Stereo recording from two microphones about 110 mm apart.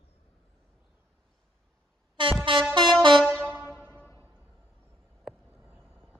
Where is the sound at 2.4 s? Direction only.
50° right (ahead or behind).